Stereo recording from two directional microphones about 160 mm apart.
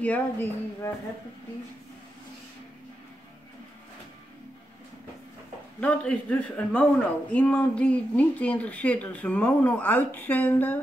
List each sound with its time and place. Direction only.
0.0 s a man's voice: 10° left (ahead or behind)
5.8 s a man's voice: 10° left (ahead or behind)